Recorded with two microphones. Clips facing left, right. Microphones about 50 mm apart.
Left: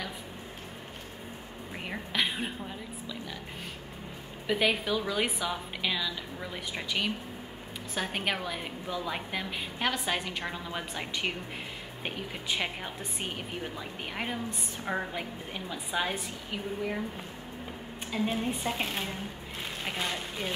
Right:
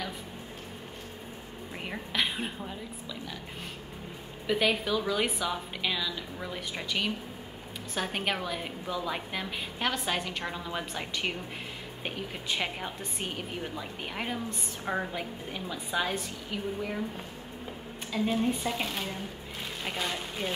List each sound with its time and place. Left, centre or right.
1.7 s a woman's voice: centre
4.5 s a woman's voice: centre
18.1 s a woman's voice: centre